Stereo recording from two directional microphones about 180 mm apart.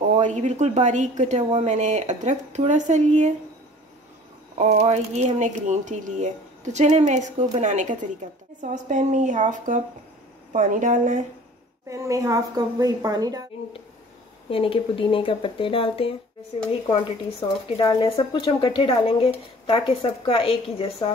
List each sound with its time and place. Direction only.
0.1 s a woman's voice: 40° right (ahead or behind)
4.6 s a woman's voice: 35° right (ahead or behind)
11.9 s a woman's voice: 15° right (ahead or behind)
14.5 s speech: 30° left (ahead or behind)
17.6 s a woman's voice: 30° left (ahead or behind)